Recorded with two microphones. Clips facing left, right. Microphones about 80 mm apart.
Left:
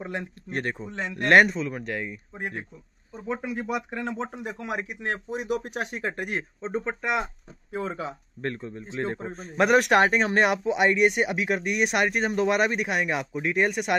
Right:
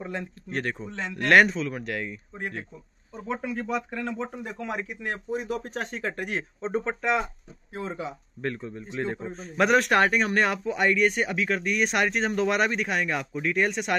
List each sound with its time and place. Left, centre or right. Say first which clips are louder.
0.0 s speech: left 1 dB; centre
2.0 s speech: even; centre
4.5 s speech: left 1 dB; centre
7.7 s speech: left 3 dB; left
8.4 s speech: even; centre
8.8 s a man's voice: left 1 dB; left
9.4 s speech: left 1 dB; centre
9.8 s speech: left 3 dB; centre